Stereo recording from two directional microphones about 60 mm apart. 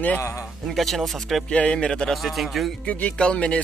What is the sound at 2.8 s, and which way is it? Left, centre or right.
Speech, left.